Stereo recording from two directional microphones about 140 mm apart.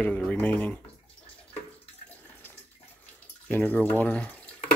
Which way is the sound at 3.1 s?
15° left (ahead or behind).